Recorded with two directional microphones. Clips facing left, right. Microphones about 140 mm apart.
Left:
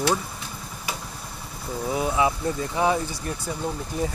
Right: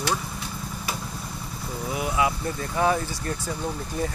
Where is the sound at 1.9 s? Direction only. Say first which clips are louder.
Left 2 dB; 25° left (ahead or behind).